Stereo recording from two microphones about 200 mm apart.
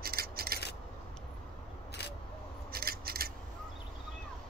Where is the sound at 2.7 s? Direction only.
50° right (ahead or behind).